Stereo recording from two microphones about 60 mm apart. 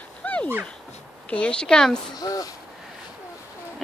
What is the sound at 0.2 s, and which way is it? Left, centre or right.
Dog, left.